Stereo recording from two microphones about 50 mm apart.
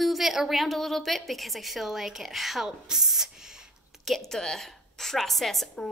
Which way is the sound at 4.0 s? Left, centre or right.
Centre.